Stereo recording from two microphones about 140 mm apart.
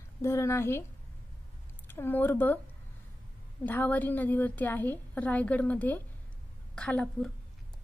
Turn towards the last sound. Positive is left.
turn(degrees=10)  # may be behind; listen again after turning